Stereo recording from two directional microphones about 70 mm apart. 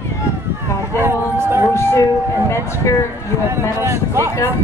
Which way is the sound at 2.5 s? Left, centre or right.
Left.